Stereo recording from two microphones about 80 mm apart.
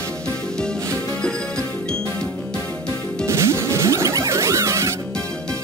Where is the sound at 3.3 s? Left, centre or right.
Right.